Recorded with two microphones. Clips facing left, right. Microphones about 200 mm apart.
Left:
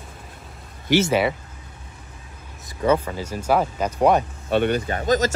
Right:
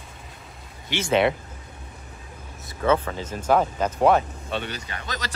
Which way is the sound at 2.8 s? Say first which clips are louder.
Left 2 dB; 10° left (ahead or behind).